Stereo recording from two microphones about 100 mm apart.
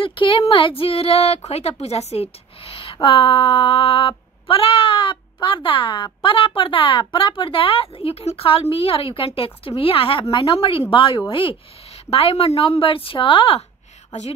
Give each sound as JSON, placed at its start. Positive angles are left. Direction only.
{"t": 0.0, "sound": "speech", "side_deg": 55}
{"t": 2.6, "sound": "speech", "side_deg": 65}
{"t": 12.1, "sound": "speech", "side_deg": 75}